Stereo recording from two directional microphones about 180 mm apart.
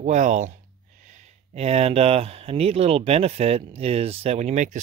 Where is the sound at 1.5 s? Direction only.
35° right (ahead or behind).